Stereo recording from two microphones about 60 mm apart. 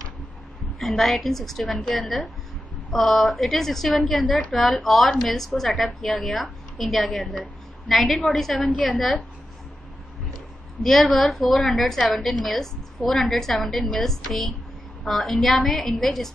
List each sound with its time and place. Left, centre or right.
0.7 s a woman's voice: centre
8.6 s a woman's voice: centre
8.9 s a woman's voice: centre
10.8 s a woman's voice: centre